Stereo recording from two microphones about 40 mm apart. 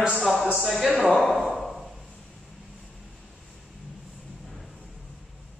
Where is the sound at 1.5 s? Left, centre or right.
Centre.